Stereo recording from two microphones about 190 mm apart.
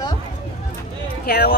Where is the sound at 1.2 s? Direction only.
55° left (ahead or behind).